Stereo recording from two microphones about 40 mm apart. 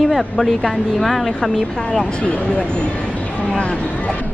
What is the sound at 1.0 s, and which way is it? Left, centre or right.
Music, centre.